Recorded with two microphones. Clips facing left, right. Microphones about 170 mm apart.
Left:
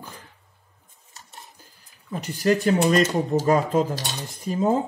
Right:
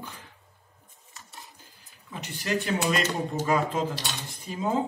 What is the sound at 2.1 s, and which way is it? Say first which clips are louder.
Speech: left 9 dB; 40° left (ahead or behind).